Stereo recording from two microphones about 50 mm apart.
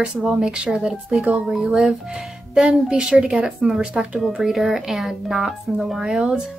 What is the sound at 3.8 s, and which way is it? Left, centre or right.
Speech, centre.